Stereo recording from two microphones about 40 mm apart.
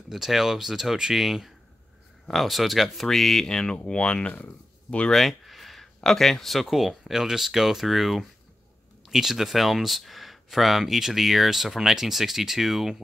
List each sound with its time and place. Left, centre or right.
0.1 s speech: centre
2.2 s speech: centre
3.1 s speech: centre; by 4.4 s left
5.1 s speech: centre